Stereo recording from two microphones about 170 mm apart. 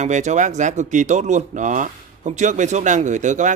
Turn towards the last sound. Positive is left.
turn(degrees=-45)  # may be behind; listen again after turning